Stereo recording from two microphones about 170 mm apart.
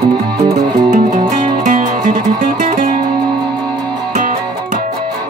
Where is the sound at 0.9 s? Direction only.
50° right (ahead or behind).